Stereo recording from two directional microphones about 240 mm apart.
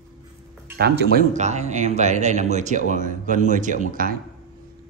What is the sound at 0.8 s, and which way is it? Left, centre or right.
Speech, right.